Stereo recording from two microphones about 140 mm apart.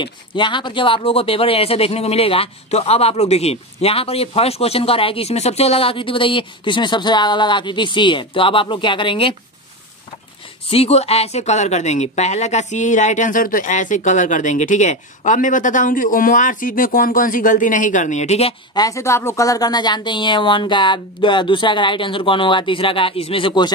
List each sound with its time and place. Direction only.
0.0 s speech: 35° left (ahead or behind)
10.7 s speech: 45° left (ahead or behind)
18.8 s speech: 20° left (ahead or behind)